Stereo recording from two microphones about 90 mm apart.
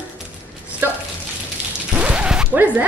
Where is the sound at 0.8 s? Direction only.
25° right (ahead or behind).